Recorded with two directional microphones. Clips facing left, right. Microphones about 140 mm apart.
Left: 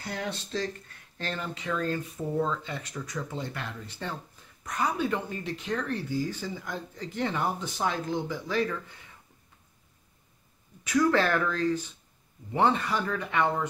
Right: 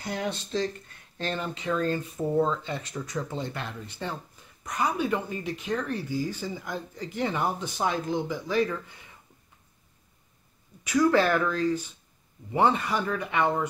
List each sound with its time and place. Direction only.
0.0 s speech: 20° right (ahead or behind)
10.8 s speech: 10° right (ahead or behind)